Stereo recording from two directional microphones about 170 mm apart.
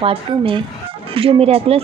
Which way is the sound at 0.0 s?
35° right (ahead or behind).